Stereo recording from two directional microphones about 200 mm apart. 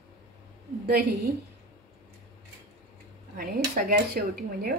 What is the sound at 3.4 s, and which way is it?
Speech, 50° right (ahead or behind).